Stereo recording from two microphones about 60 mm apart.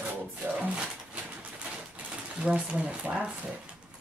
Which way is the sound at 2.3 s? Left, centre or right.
Centre.